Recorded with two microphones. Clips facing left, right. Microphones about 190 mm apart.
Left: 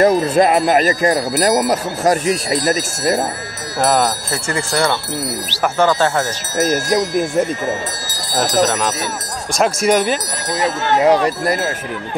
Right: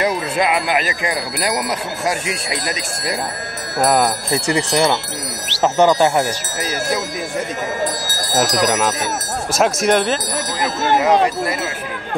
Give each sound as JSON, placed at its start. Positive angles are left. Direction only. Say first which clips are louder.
{"t": 0.0, "sound": "speech", "louder": "left 6 dB", "side_deg": 45}
{"t": 3.8, "sound": "speech", "louder": "even", "side_deg": -5}
{"t": 6.6, "sound": "speech", "louder": "left 7 dB", "side_deg": 50}
{"t": 8.6, "sound": "speech", "louder": "right 1 dB", "side_deg": -10}
{"t": 11.1, "sound": "speech", "louder": "left 2 dB", "side_deg": 35}